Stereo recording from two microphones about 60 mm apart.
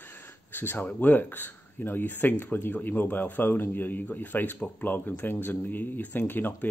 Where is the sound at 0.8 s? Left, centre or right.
Left.